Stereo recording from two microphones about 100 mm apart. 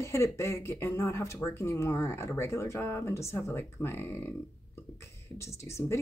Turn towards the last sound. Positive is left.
turn(degrees=30)  # may be behind; listen again after turning